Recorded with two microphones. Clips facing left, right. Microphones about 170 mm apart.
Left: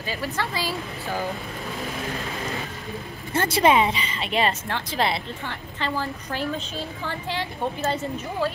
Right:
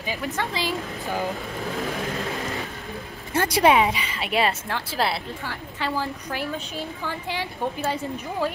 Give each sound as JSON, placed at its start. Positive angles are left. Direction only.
{"t": 0.0, "sound": "a woman's voice", "side_deg": -15}
{"t": 3.3, "sound": "a woman's voice", "side_deg": -10}